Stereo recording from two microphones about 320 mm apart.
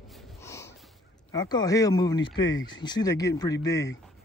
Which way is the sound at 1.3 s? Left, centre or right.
Centre.